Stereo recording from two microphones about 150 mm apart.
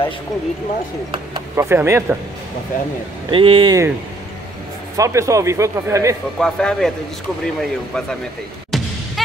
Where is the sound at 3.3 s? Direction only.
35° right (ahead or behind).